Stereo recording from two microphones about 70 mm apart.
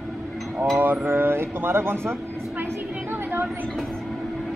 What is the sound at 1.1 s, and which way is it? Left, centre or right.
Speech, right.